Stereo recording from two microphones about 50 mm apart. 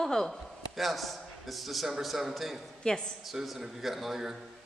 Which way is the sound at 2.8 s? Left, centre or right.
Centre.